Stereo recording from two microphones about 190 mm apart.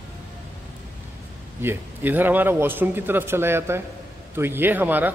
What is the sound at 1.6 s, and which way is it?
Speech, 10° right (ahead or behind).